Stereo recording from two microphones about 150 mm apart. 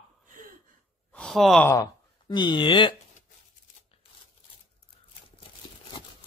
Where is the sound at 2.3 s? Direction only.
30° left (ahead or behind).